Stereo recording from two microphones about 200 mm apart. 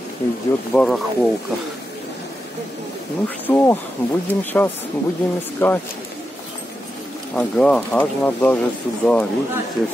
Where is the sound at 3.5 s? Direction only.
10° left (ahead or behind).